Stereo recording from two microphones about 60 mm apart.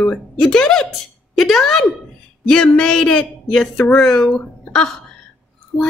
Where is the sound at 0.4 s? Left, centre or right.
Centre.